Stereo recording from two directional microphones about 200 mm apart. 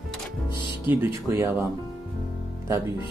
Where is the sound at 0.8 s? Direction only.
10° right (ahead or behind).